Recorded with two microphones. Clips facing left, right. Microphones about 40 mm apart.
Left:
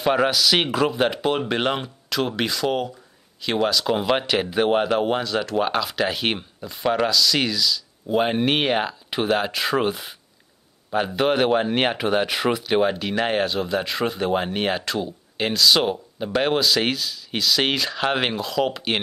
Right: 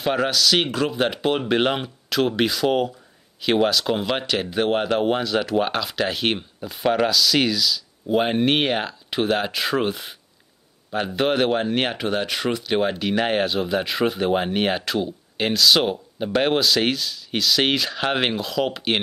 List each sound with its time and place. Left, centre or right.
0.0 s speech: centre